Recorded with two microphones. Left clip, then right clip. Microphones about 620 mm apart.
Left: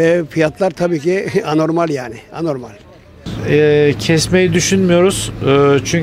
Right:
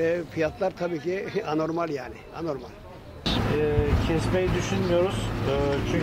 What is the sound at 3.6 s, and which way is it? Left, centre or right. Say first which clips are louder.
Speech: left 14 dB; left.